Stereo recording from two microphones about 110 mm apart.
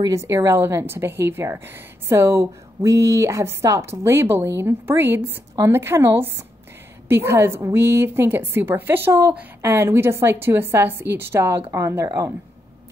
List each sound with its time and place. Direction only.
0.1 s a woman's voice: 25° right (ahead or behind)